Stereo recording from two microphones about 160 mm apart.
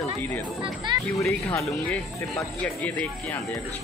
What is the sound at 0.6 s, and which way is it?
Speech, 30° right (ahead or behind).